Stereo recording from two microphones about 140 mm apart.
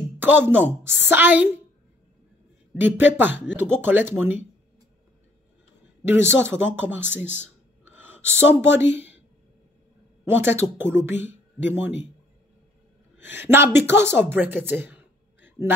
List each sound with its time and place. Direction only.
0.2 s speech: 15° right (ahead or behind)
2.7 s speech: 15° right (ahead or behind)
6.0 s speech: 15° right (ahead or behind)
10.2 s speech: 15° right (ahead or behind)
13.2 s a woman's voice: 15° right (ahead or behind)